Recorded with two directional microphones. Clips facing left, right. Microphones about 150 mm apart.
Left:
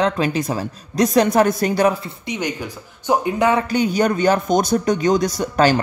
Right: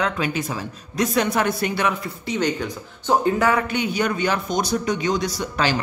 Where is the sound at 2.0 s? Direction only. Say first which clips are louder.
Right 2 dB; 15° left (ahead or behind).